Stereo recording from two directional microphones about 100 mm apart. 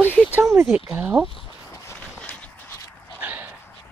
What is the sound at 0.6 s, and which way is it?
Speech, 10° right (ahead or behind).